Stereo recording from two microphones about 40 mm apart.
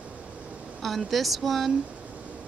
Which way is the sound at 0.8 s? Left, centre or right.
Centre.